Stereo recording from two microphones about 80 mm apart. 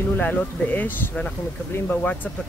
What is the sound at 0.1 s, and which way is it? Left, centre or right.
Speech, left.